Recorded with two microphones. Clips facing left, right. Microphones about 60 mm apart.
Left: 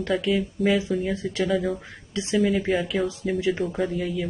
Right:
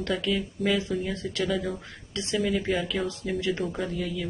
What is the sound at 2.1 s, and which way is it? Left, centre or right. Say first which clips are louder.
Speech: left 5 dB; left.